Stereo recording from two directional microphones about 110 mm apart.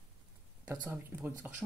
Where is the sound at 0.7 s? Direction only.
20° right (ahead or behind).